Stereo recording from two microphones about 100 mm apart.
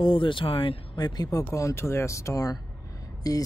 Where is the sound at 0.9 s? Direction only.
40° left (ahead or behind).